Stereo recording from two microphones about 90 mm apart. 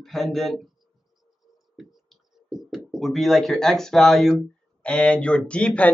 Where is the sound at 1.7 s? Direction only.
Centre (ahead or behind).